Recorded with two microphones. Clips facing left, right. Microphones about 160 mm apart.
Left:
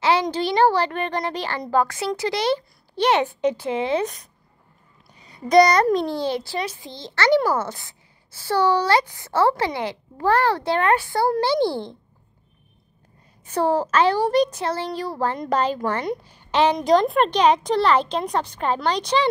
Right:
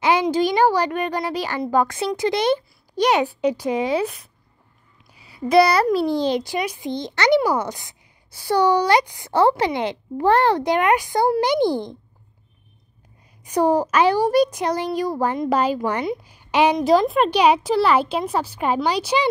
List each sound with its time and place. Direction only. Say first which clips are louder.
0.0 s a woman's voice: right 2 dB; 10° right (ahead or behind)
13.5 s a woman's voice: right 2 dB; 15° right (ahead or behind)